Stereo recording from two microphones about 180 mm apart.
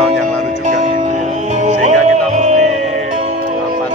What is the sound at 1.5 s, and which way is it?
Music, 40° right (ahead or behind).